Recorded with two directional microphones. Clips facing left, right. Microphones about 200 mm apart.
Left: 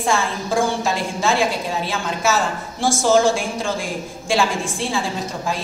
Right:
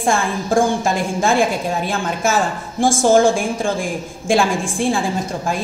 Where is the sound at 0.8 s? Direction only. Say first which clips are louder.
Right 3 dB; 50° right (ahead or behind).